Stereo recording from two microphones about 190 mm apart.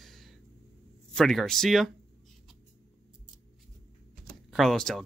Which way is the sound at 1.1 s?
Centre (ahead or behind).